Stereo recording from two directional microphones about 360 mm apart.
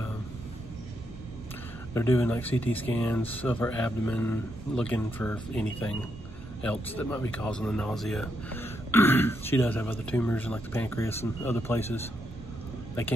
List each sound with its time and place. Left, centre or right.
2.0 s speech: centre